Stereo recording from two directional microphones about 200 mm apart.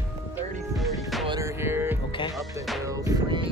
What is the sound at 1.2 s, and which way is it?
Music, 20° right (ahead or behind).